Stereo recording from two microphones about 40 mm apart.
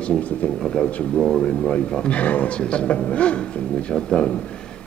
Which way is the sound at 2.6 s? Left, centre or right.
Left.